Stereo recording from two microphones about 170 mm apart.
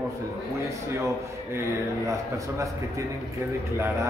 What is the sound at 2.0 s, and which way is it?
A man's voice, 20° right (ahead or behind).